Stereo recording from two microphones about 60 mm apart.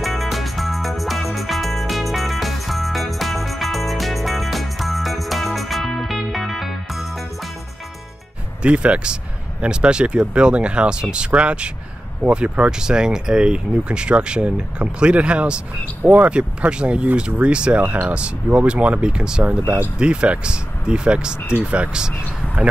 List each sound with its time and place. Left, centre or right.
0.0 s music: centre
8.6 s speech: right